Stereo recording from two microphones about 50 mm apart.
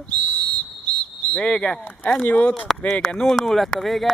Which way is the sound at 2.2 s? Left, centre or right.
Left.